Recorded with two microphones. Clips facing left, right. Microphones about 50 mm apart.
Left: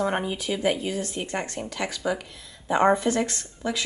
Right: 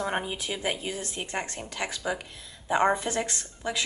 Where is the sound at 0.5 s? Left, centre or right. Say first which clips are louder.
Left 7 dB; centre.